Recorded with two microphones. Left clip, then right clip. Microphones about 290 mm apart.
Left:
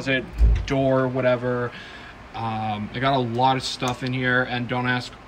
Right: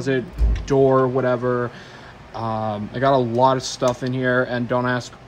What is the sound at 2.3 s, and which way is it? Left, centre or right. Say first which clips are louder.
Speech: right 3 dB; centre.